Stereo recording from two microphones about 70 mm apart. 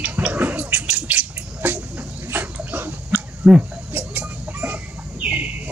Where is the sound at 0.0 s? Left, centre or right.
Centre.